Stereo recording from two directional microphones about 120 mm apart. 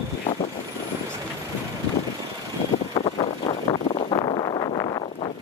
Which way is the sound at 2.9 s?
45° left (ahead or behind).